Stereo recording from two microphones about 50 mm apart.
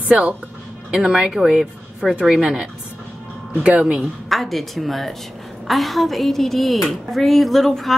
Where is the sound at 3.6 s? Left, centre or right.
Centre.